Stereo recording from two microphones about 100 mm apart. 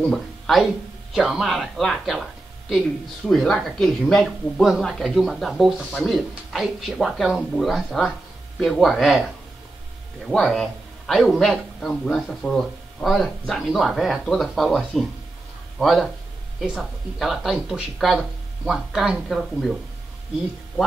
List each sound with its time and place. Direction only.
0.0 s speech: centre (ahead or behind)
3.3 s a man's voice: centre (ahead or behind)
16.6 s speech: 10° right (ahead or behind)